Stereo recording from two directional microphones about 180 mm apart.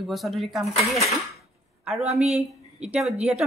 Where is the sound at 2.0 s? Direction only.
35° right (ahead or behind).